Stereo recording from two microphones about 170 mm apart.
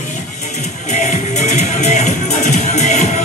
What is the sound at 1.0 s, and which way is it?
Music, 45° left (ahead or behind).